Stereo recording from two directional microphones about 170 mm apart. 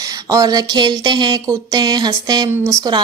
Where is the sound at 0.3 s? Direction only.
20° right (ahead or behind).